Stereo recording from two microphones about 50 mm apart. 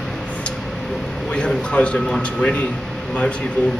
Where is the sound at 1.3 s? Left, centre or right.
Left.